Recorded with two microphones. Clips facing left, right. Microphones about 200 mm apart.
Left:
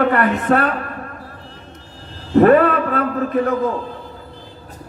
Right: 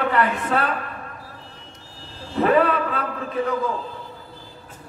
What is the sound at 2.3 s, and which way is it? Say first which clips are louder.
A man's voice: left 7 dB; 50° left (ahead or behind).